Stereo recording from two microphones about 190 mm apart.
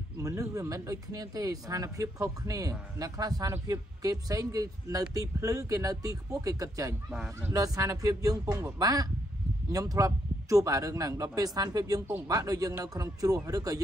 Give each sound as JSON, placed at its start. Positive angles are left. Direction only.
{"t": 0.2, "sound": "speech", "side_deg": -20}
{"t": 7.1, "sound": "speech", "side_deg": 0}
{"t": 7.5, "sound": "a man's voice", "side_deg": -20}